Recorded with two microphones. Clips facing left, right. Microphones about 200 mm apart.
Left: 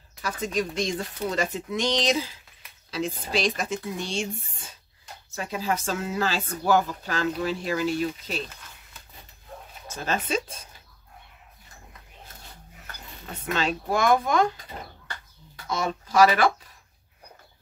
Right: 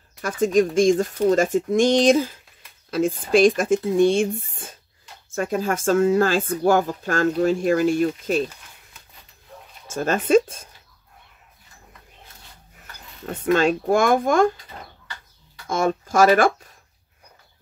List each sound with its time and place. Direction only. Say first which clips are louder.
0.2 s speech: right 10 dB; 50° right (ahead or behind)
9.8 s speech: right 8 dB; 50° right (ahead or behind)
13.2 s speech: right 9 dB; 50° right (ahead or behind)
15.6 s speech: right 7 dB; 50° right (ahead or behind)